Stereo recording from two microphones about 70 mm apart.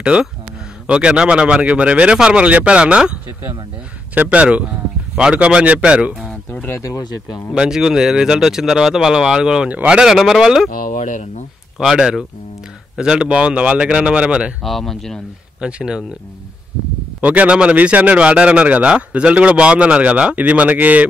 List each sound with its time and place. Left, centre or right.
0.1 s speech: centre
4.1 s a man's voice: right
7.0 s speech: left
7.5 s speech: centre
11.8 s speech: centre
14.6 s speech: centre
15.6 s speech: centre
17.2 s a man's voice: right